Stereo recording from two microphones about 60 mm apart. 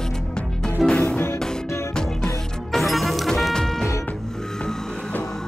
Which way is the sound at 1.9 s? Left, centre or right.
Centre.